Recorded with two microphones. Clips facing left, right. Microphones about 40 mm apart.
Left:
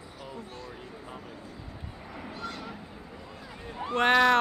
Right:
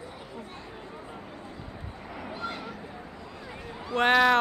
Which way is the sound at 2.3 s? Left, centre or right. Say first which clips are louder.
Right 3 dB; centre.